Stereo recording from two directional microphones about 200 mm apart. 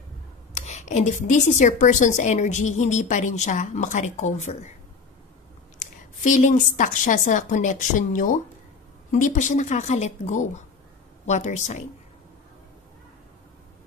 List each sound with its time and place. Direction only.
0.6 s speech: 35° left (ahead or behind)
5.8 s speech: 40° left (ahead or behind)